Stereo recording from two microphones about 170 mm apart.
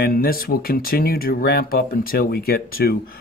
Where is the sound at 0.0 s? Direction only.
60° left (ahead or behind).